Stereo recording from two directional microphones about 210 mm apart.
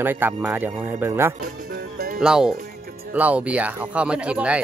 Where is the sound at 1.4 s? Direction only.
45° right (ahead or behind).